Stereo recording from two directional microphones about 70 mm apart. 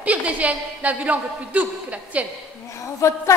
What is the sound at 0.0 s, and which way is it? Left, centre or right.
A woman's voice, centre.